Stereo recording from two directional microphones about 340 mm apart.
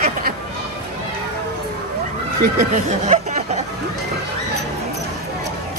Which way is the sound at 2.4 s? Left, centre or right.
Right.